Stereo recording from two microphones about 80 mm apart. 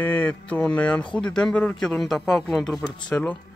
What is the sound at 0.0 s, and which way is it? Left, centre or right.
Speech, left.